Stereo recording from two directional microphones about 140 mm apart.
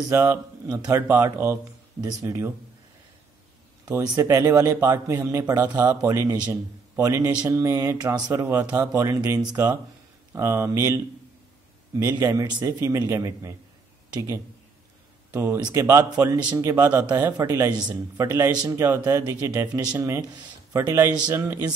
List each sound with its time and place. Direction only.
0.1 s a man's voice: 15° right (ahead or behind)
4.1 s a man's voice: 25° right (ahead or behind)
5.9 s a man's voice: 25° right (ahead or behind)
15.3 s a man's voice: 20° right (ahead or behind)